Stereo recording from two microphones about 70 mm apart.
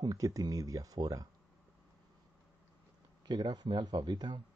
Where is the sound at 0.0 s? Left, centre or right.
Right.